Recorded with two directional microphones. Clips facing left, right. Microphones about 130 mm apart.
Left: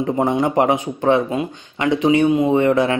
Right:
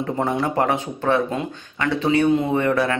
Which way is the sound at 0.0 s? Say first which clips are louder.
Left 4 dB; 20° left (ahead or behind).